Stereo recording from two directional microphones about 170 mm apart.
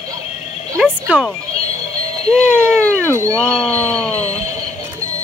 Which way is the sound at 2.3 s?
5° left (ahead or behind).